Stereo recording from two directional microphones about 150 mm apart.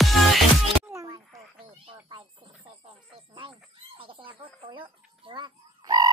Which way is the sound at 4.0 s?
35° right (ahead or behind).